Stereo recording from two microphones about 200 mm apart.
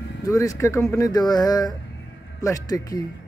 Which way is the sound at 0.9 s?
20° left (ahead or behind).